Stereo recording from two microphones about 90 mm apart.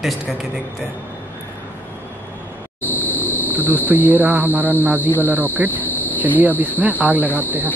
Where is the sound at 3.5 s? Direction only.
20° right (ahead or behind).